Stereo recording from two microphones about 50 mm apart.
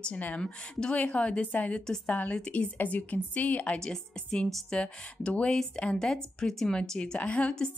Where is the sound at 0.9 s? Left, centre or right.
Left.